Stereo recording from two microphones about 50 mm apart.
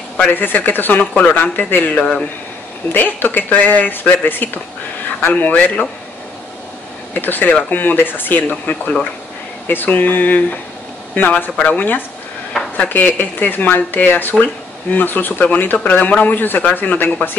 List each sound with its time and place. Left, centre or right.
0.3 s speech: left
7.2 s speech: left
16.3 s speech: left